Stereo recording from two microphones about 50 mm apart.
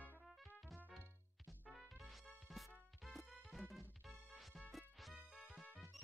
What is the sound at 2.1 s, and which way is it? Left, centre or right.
Music, centre.